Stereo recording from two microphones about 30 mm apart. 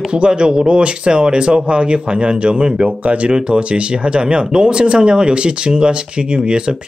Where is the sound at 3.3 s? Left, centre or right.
Right.